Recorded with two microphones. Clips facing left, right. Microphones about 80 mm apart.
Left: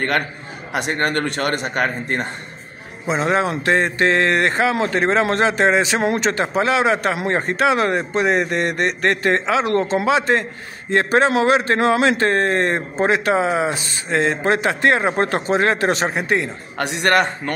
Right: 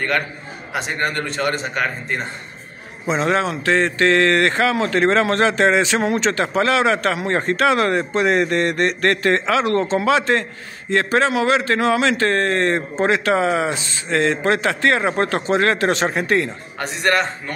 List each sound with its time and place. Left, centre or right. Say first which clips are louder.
0.7 s a man's voice: left 2 dB; left
3.1 s a man's voice: even; centre
16.7 s a man's voice: left 2 dB; left